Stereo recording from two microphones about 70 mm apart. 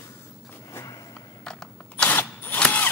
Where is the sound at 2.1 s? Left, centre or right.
Left.